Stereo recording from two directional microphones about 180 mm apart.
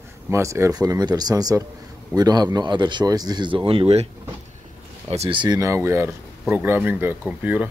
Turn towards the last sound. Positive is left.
turn(degrees=-10)  # may be behind; listen again after turning